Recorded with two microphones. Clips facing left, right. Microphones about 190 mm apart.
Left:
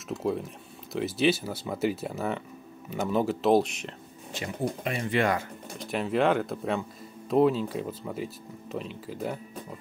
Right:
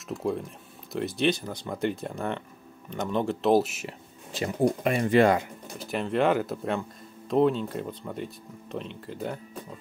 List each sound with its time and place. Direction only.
0.1 s speech: centre (ahead or behind)
4.8 s speech: 50° right (ahead or behind)
5.8 s speech: centre (ahead or behind)